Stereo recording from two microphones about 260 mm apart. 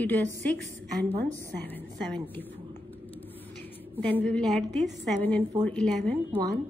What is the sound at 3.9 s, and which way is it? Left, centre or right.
A woman's voice, centre.